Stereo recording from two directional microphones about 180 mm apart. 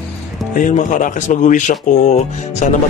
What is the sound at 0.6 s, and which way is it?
A man's voice, 45° left (ahead or behind).